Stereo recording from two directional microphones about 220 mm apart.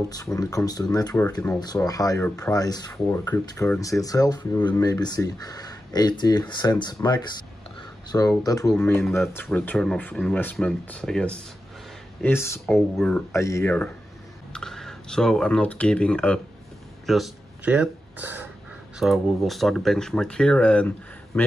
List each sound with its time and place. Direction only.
0.4 s speech: 15° left (ahead or behind)
13.3 s speech: 15° left (ahead or behind)